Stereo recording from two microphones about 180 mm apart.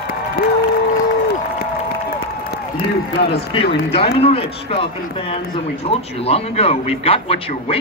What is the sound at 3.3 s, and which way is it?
Speech, 30° left (ahead or behind).